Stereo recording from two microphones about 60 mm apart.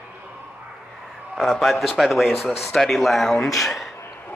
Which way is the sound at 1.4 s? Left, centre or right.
Centre.